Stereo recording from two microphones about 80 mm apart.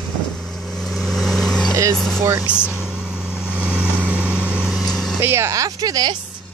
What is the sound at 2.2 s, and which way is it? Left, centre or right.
Speech, right.